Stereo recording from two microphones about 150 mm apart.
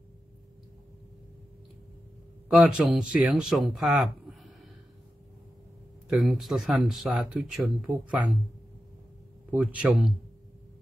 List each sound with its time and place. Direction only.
2.5 s speech: 5° right (ahead or behind)
6.0 s speech: centre (ahead or behind)
9.5 s a man's voice: 10° right (ahead or behind)